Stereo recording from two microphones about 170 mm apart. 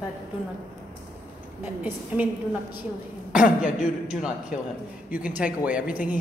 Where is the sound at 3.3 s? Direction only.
50° left (ahead or behind).